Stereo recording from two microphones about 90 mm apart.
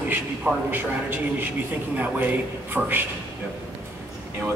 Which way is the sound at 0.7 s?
25° right (ahead or behind).